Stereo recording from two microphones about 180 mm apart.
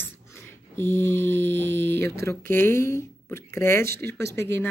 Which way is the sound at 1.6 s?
75° right (ahead or behind).